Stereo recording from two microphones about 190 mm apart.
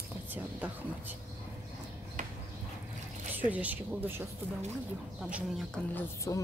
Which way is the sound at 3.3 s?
10° right (ahead or behind).